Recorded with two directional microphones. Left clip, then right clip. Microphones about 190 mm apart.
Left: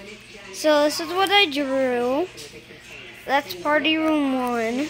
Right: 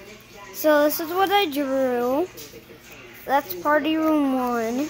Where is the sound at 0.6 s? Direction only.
10° right (ahead or behind).